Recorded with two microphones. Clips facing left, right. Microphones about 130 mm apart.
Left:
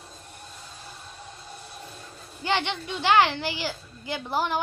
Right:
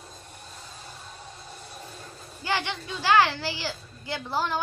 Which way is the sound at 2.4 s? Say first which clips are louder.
Left 3 dB; 20° left (ahead or behind).